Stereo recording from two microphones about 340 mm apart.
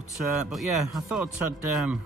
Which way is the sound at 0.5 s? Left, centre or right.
Centre.